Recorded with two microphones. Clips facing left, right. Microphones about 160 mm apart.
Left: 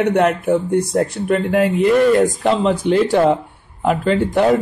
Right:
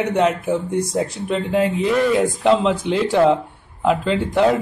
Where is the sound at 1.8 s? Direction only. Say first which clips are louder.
Left 7 dB; centre (ahead or behind).